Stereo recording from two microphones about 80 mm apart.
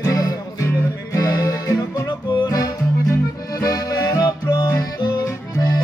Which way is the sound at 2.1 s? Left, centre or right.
Left.